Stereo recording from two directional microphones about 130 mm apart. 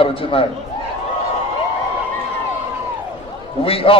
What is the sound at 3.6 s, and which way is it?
Speech, 45° left (ahead or behind).